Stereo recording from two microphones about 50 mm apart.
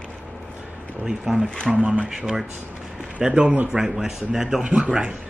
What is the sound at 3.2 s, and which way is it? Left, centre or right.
Speech, right.